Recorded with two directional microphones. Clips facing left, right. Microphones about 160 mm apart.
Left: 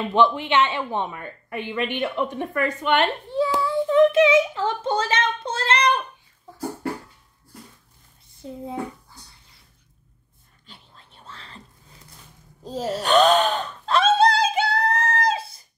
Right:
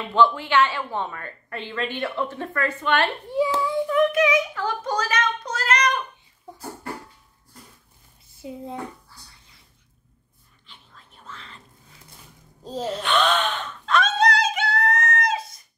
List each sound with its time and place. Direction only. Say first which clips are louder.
0.1 s speech: right 1 dB; 20° left (ahead or behind)
3.3 s babbling: even; 15° right (ahead or behind)
3.8 s child singing: left 5 dB; 25° left (ahead or behind)
8.4 s speech: left 1 dB; 5° right (ahead or behind)
9.1 s a sound: left 2 dB; 20° left (ahead or behind)
11.2 s a sound: even; 35° left (ahead or behind)
12.8 s gasp: left 5 dB; 45° left (ahead or behind)